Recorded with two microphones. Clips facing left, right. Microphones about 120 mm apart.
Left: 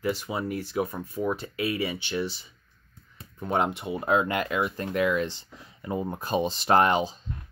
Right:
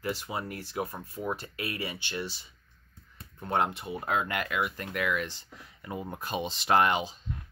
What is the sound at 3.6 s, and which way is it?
Speech, 20° left (ahead or behind).